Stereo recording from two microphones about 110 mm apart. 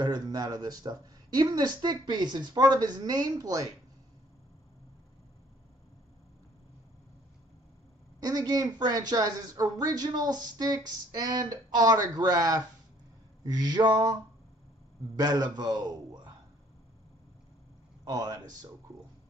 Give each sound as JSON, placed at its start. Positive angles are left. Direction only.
{"t": 0.0, "sound": "speech", "side_deg": -35}
{"t": 8.2, "sound": "speech", "side_deg": -35}
{"t": 15.1, "sound": "a man's voice", "side_deg": -40}
{"t": 18.0, "sound": "speech", "side_deg": -35}